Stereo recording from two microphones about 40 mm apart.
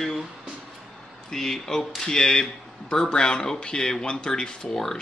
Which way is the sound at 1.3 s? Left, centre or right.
Centre.